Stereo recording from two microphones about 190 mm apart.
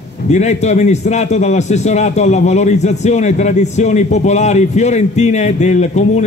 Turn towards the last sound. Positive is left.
turn(degrees=35)  # may be behind; listen again after turning